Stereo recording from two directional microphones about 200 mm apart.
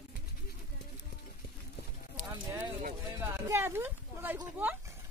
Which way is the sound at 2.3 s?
10° right (ahead or behind).